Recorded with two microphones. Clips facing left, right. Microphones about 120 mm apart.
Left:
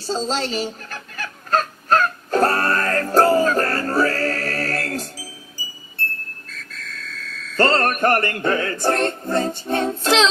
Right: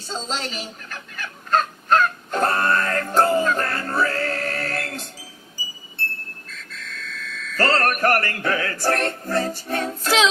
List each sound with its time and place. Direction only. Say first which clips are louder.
0.0 s fowl: left 6 dB; 35° left (ahead or behind)
6.5 s frog: even; 40° left (ahead or behind)
7.5 s music: left 2 dB; 25° left (ahead or behind)